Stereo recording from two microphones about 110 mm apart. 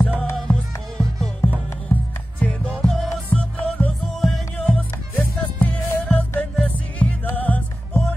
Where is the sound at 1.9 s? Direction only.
10° left (ahead or behind).